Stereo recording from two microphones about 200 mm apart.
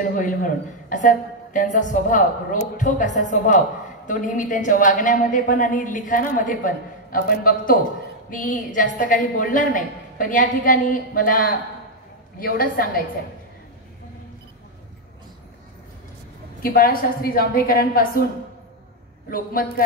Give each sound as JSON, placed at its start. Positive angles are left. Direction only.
{"t": 0.0, "sound": "a woman's voice", "side_deg": 40}
{"t": 16.6, "sound": "a woman's voice", "side_deg": 45}